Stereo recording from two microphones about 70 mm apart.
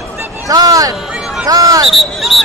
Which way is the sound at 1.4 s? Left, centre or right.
Right.